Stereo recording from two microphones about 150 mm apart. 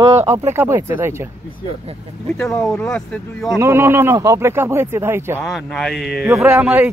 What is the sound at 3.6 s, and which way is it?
Speech, 15° right (ahead or behind).